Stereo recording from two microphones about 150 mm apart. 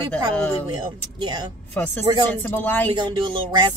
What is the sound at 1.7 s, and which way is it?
Speech, 10° left (ahead or behind).